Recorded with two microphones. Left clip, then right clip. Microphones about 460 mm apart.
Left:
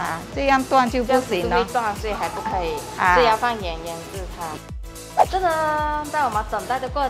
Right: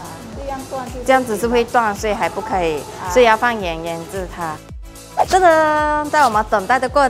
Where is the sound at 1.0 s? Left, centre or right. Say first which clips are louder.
Right 5 dB; right.